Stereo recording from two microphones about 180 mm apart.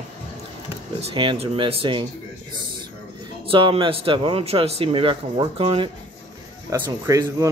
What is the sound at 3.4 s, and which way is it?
Speech, 30° right (ahead or behind).